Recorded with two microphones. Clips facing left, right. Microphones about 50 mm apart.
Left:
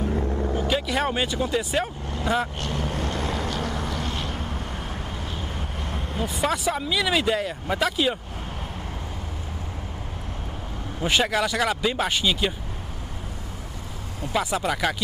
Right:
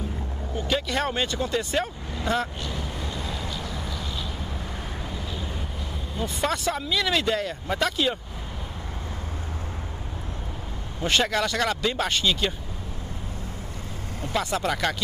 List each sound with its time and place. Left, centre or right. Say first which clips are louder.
0.5 s vehicle: right 1 dB; centre
2.2 s speech: left 1 dB; centre
2.6 s vehicle: left 5 dB; left
6.2 s speech: left 1 dB; centre
11.0 s speech: left 1 dB; centre
14.3 s speech: left 1 dB; centre